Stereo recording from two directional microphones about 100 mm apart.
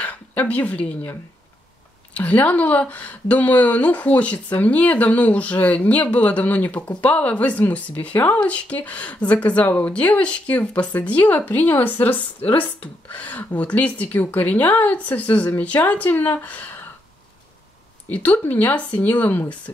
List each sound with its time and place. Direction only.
0.0 s a woman's voice: 15° left (ahead or behind)
2.1 s a woman's voice: 15° left (ahead or behind)
18.1 s a woman's voice: 15° left (ahead or behind)